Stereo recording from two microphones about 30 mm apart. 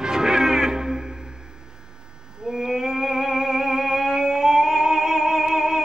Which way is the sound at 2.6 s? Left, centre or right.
Centre.